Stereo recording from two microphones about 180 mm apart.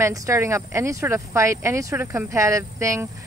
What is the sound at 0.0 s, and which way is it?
Speech, 15° right (ahead or behind).